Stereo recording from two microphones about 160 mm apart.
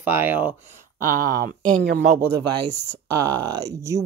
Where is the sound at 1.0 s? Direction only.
60° right (ahead or behind); by 2.0 s 80° right.